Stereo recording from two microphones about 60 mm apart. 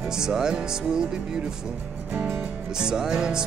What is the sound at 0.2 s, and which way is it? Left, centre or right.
Music, centre.